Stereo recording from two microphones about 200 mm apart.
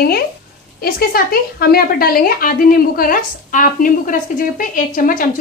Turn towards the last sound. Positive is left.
turn(degrees=45)  # may be behind; listen again after turning